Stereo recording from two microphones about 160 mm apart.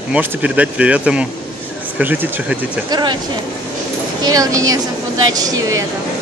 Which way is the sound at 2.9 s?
25° right (ahead or behind).